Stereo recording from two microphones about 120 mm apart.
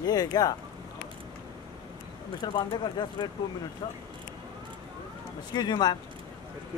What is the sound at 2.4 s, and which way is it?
Speech, 35° left (ahead or behind).